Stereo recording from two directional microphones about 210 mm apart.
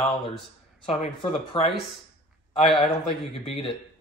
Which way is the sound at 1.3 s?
25° left (ahead or behind).